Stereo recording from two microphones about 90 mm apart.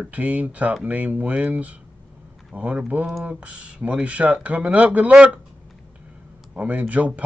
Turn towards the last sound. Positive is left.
turn(degrees=-15)  # may be behind; listen again after turning